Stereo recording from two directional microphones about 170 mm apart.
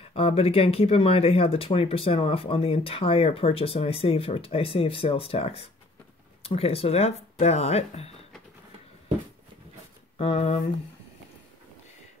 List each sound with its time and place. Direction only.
0.1 s speech: 35° left (ahead or behind)
10.1 s speech: 35° left (ahead or behind)